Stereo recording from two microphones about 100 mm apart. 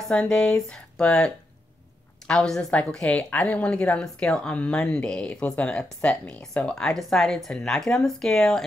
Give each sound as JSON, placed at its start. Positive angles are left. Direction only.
{"t": 0.1, "sound": "a woman's voice", "side_deg": 10}